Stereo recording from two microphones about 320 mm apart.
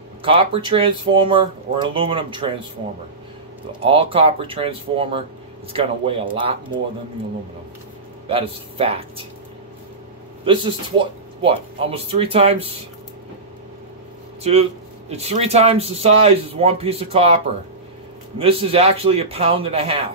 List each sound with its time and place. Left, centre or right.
0.2 s speech: centre
3.8 s speech: centre
8.3 s speech: centre
10.4 s speech: centre
14.4 s speech: centre
18.4 s speech: centre